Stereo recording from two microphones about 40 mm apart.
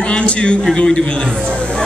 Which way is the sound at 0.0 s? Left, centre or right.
Left.